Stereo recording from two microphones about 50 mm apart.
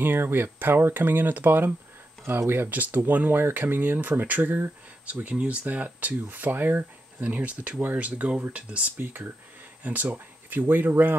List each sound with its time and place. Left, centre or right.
0.0 s speech: right
2.7 s speech: right
8.9 s speech: right